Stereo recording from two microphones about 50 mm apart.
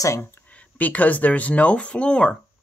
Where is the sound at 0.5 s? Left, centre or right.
Left.